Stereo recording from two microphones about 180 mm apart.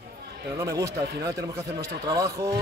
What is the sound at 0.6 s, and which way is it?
Speech, 15° right (ahead or behind).